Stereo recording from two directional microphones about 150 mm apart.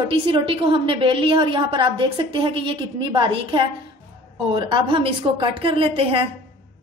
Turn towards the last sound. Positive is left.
turn(degrees=-35)  # may be behind; listen again after turning